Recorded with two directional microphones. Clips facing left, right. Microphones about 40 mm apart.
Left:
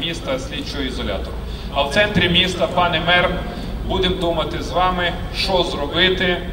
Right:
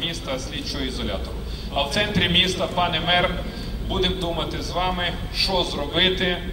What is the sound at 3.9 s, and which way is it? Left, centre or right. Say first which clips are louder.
A man's voice: left 5 dB; left.